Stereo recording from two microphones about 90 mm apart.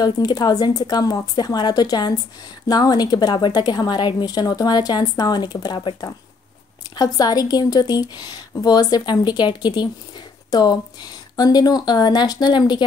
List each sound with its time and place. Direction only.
0.0 s speech: 45° left (ahead or behind)